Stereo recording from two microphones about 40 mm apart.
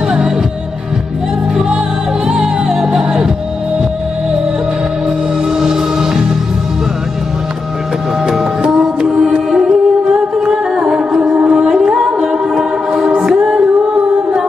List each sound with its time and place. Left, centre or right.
2.2 s music: centre
5.6 s music: centre
8.3 s music: centre
9.0 s mantra: centre
9.5 s music: centre